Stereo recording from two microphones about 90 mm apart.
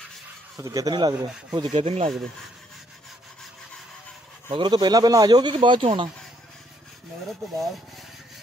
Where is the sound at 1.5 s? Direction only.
60° right (ahead or behind).